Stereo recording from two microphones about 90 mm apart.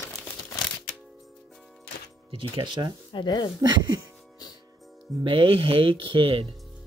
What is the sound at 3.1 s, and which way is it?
Speech, 55° left (ahead or behind).